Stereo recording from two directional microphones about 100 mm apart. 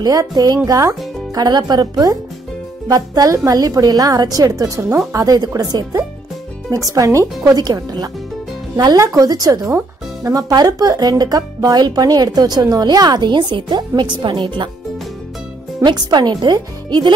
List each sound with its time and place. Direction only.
0.0 s speech: 40° right (ahead or behind)
15.8 s speech: 45° right (ahead or behind)